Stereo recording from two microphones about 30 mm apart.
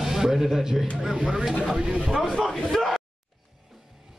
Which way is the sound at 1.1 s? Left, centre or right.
Centre.